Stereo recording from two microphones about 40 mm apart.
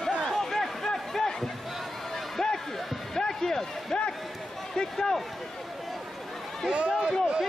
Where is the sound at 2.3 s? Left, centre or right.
Centre.